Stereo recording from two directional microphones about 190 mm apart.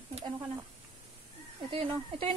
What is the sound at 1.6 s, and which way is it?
Speech, 30° right (ahead or behind).